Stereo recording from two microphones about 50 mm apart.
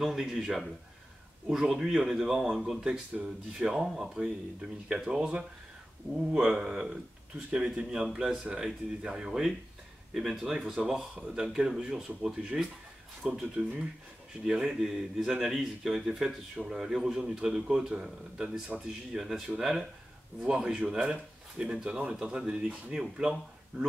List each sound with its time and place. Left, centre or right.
0.0 s speech: centre
2.9 s speech: right; by 10.6 s centre
10.6 s speech: right
13.2 s speech: centre
14.4 s speech: centre
20.3 s speech: right